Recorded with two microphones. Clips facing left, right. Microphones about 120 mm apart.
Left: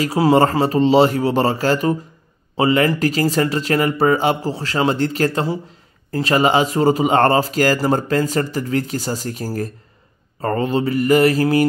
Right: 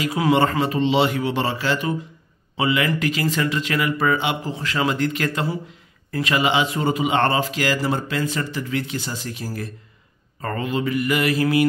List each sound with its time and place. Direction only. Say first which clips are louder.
0.0 s speech: left 4 dB; 35° left (ahead or behind)